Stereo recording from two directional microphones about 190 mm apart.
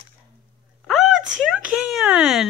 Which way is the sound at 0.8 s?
Centre (ahead or behind).